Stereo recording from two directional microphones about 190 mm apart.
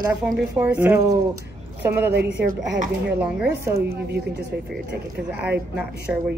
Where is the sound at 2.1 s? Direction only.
60° right (ahead or behind).